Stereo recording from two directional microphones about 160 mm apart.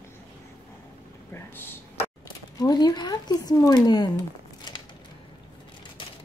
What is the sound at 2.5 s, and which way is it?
Speech, 25° left (ahead or behind).